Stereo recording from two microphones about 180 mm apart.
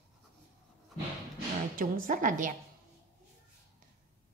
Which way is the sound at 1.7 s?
45° right (ahead or behind).